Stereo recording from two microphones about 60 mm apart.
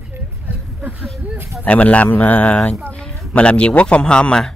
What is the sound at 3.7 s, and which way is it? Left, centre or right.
Speech, left.